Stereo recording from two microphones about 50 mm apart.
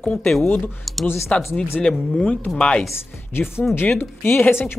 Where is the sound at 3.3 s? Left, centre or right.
Left.